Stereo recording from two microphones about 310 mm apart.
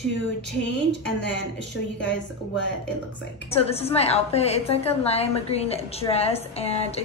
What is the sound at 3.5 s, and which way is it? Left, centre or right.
A woman's voice, centre.